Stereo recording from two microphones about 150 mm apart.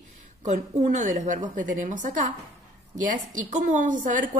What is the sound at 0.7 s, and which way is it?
Speech, 55° right (ahead or behind).